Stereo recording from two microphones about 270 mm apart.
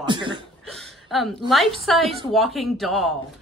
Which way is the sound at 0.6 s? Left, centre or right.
Centre.